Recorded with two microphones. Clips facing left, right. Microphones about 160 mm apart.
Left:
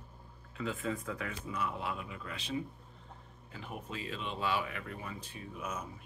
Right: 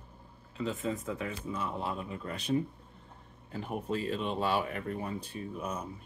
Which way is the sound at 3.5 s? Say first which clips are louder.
Right 9 dB; 40° right (ahead or behind).